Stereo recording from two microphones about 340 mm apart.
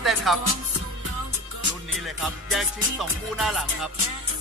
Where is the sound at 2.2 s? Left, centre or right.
Centre.